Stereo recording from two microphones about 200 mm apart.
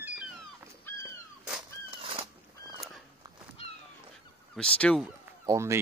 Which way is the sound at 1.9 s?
30° right (ahead or behind).